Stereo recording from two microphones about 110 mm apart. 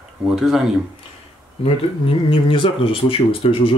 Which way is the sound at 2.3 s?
55° left (ahead or behind).